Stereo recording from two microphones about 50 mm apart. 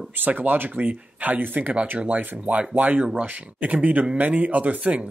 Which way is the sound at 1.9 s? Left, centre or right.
Right.